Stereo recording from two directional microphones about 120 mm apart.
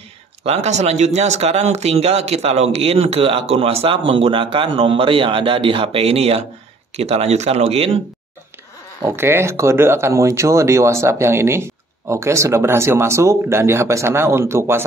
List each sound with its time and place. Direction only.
0.4 s speech: 65° right (ahead or behind)
9.0 s speech: 20° right (ahead or behind)